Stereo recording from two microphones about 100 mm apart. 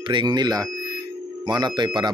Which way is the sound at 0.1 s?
50° right (ahead or behind).